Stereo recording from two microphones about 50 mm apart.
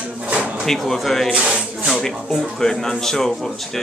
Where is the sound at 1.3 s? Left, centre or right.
Right.